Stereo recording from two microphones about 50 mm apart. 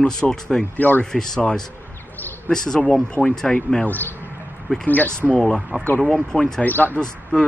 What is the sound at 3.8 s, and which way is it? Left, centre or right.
Speech, left.